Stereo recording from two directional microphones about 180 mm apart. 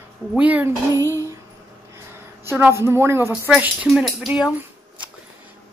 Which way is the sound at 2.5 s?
15° right (ahead or behind).